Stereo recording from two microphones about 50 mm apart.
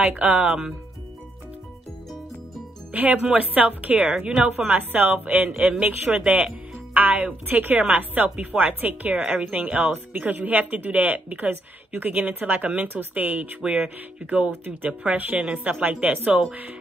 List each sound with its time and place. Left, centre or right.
0.2 s speech: right
2.9 s speech: right
4.6 s speech: right